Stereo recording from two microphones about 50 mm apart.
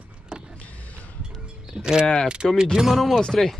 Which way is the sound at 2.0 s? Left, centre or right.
Centre.